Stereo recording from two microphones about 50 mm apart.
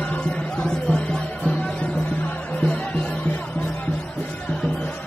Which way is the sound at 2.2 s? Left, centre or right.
Left.